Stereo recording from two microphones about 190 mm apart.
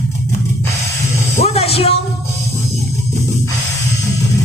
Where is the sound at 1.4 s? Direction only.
30° left (ahead or behind).